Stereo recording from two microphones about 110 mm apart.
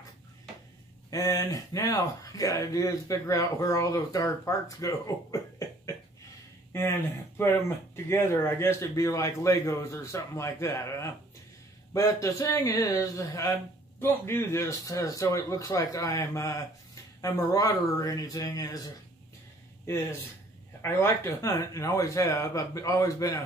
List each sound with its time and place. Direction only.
1.1 s speech: 30° left (ahead or behind)
6.7 s speech: 20° left (ahead or behind)
20.8 s speech: 20° left (ahead or behind)